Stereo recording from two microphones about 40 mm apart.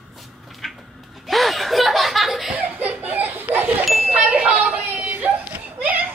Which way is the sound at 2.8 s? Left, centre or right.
Right.